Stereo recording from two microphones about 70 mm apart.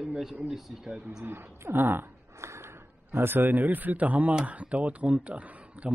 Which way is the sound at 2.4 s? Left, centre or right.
Right.